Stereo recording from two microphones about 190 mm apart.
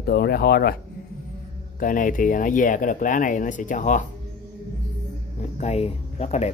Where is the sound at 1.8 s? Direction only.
45° left (ahead or behind).